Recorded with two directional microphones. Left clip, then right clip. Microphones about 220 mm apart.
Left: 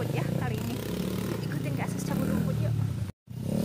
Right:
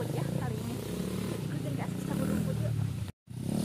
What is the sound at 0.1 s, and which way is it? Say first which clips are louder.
Vehicle: left 4 dB; 10° left (ahead or behind).